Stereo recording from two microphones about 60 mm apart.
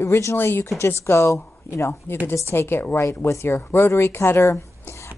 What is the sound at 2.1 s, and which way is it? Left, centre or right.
A woman's voice, left.